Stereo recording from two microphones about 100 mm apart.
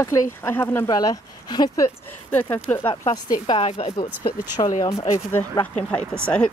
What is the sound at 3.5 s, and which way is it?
Speech, 80° left.